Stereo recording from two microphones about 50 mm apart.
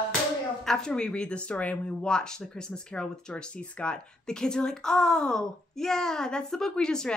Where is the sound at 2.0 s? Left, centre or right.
Centre.